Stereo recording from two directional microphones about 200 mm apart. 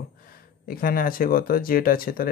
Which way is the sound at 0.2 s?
45° left (ahead or behind).